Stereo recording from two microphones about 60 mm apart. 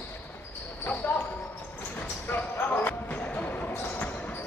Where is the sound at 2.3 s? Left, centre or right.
Left.